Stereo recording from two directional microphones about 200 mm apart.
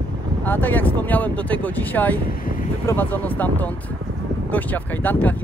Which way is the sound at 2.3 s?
45° left (ahead or behind).